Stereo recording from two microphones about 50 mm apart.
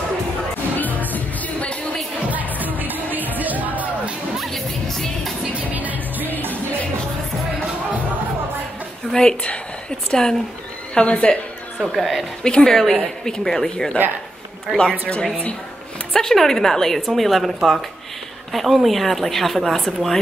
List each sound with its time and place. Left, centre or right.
0.7 s music: left
2.8 s music: right
4.4 s music: centre
5.6 s music: right
9.1 s a woman's voice: centre
11.8 s a woman's voice: centre
12.4 s a woman's voice: centre
14.8 s a woman's voice: centre